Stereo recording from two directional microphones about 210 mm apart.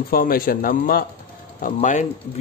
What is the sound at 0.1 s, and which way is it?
A man's voice, 45° left (ahead or behind).